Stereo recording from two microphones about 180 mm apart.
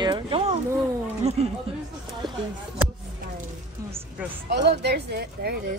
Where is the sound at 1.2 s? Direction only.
35° right (ahead or behind).